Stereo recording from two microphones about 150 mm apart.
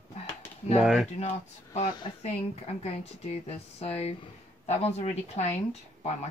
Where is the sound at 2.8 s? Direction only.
45° left (ahead or behind).